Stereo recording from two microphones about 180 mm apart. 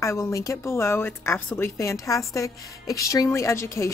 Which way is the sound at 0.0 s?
15° left (ahead or behind).